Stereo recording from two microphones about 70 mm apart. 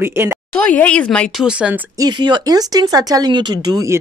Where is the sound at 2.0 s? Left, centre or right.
Right.